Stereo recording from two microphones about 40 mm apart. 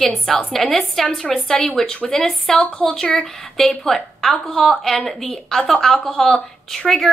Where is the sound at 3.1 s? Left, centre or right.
Centre.